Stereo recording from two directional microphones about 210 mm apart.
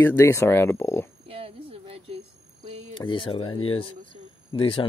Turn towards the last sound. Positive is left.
turn(degrees=25)  # may be behind; listen again after turning